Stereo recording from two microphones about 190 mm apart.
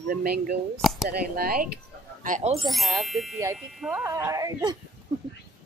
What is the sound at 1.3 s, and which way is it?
Speech, 50° right (ahead or behind).